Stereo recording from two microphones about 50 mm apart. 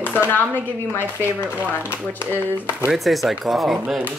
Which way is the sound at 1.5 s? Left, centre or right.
Right.